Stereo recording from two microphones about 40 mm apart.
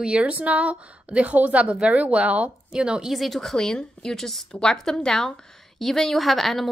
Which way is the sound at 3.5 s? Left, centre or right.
Centre.